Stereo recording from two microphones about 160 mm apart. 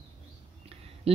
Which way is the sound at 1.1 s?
40° right (ahead or behind).